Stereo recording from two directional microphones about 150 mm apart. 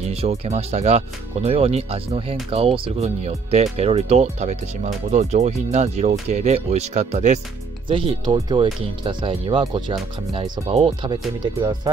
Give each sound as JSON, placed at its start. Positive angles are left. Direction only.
{"t": 0.1, "sound": "speech", "side_deg": -45}
{"t": 7.9, "sound": "speech", "side_deg": -35}